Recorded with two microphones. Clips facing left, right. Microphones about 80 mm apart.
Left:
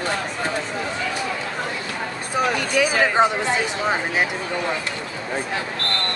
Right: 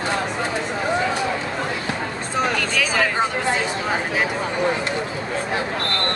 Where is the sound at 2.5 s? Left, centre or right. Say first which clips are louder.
Left 2 dB; centre.